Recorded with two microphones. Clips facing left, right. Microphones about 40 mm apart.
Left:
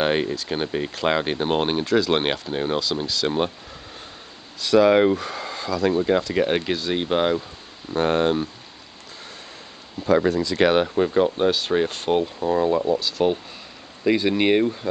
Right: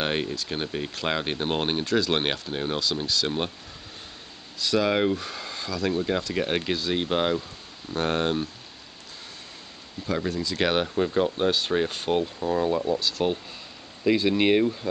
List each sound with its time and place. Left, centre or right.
0.0 s speech: centre
4.6 s speech: centre
10.0 s speech: left
10.5 s speech: centre